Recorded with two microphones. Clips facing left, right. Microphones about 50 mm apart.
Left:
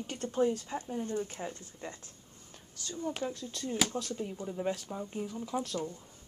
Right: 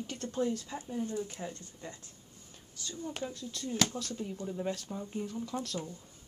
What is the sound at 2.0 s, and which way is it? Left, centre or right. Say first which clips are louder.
Whispering: left 1 dB; left.